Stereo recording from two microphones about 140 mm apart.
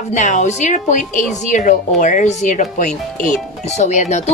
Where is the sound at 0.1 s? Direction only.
60° left (ahead or behind).